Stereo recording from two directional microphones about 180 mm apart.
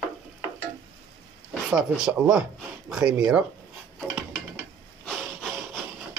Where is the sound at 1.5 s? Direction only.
5° right (ahead or behind).